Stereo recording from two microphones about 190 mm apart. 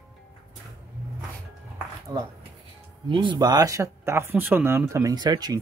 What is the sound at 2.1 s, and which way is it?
Speech, 20° right (ahead or behind).